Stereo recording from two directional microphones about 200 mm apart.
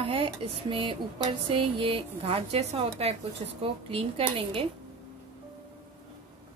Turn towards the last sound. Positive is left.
turn(degrees=-25)  # may be behind; listen again after turning